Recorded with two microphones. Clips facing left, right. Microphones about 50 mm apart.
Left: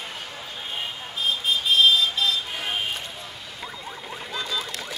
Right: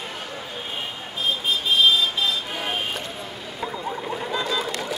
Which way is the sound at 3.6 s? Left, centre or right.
Centre.